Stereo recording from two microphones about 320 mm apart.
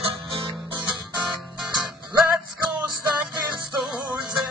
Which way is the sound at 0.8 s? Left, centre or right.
Centre.